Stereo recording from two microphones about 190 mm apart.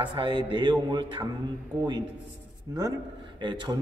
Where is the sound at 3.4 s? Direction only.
25° right (ahead or behind).